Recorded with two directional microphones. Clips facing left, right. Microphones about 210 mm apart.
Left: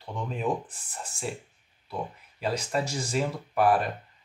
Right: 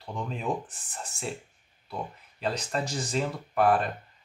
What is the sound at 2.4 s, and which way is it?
Speech, 10° left (ahead or behind).